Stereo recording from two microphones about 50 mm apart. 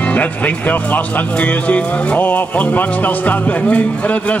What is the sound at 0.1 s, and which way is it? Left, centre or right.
Speech, left.